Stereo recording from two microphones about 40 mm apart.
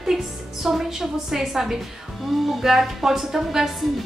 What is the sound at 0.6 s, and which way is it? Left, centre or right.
A woman's voice, centre.